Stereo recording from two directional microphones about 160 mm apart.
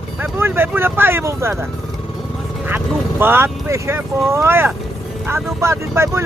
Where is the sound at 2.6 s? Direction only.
10° right (ahead or behind).